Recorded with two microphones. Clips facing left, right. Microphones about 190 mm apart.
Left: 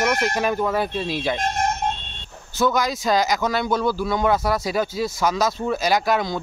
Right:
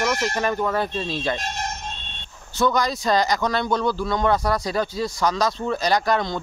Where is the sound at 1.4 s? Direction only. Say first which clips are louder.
Left 7 dB; 50° left (ahead or behind).